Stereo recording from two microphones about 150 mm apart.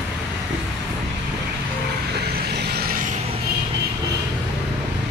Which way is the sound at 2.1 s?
90° right.